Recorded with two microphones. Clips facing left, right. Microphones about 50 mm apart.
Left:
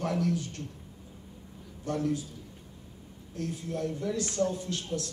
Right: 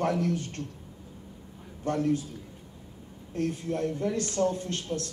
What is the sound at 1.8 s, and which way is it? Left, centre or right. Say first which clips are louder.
Speech: right 3 dB; right.